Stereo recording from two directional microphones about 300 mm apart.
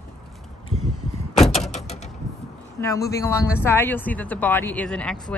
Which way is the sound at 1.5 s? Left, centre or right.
Left.